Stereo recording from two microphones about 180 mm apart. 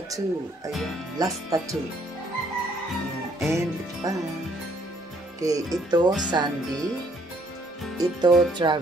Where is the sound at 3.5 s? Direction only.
15° right (ahead or behind).